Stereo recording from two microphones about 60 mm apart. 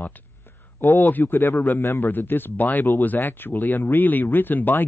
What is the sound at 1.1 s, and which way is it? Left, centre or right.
Speech, left.